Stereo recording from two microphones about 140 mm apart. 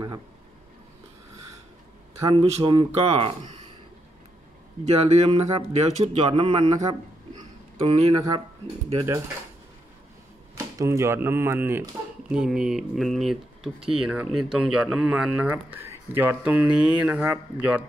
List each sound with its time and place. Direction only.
2.3 s speech: 35° right (ahead or behind)
4.8 s speech: 50° right (ahead or behind)
8.1 s speech: 25° right (ahead or behind)
10.6 s speech: 20° right (ahead or behind)
12.3 s speech: 5° right (ahead or behind)